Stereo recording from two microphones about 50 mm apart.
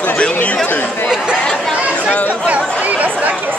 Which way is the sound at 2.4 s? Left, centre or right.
Right.